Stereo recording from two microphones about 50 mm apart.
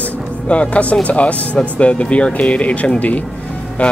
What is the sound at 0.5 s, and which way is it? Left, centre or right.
Speech, left.